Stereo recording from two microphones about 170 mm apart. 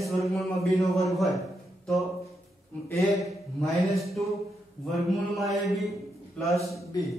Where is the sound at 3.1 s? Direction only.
Centre (ahead or behind).